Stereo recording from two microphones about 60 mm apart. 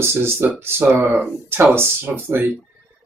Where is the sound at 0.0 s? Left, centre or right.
Right.